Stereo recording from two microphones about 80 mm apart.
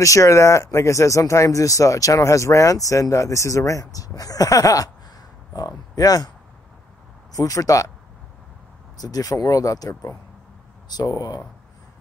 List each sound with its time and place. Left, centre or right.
0.0 s speech: left
7.3 s speech: left
8.9 s speech: left
10.9 s speech: left